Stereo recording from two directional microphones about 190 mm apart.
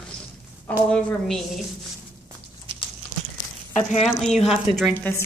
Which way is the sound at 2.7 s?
25° right (ahead or behind).